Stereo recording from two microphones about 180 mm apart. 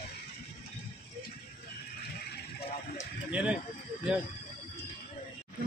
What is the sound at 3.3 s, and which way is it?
Speech, 5° right (ahead or behind).